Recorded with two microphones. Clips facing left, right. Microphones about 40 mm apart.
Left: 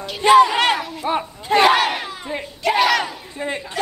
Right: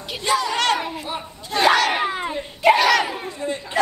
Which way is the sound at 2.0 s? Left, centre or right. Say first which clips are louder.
Right 6 dB; right.